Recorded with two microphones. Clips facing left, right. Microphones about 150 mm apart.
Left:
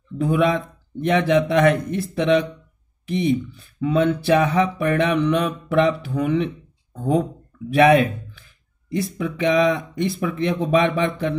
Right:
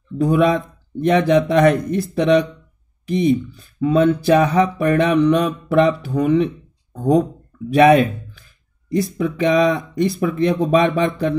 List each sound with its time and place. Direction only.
0.2 s speech: 35° right (ahead or behind)
7.7 s speech: 35° right (ahead or behind)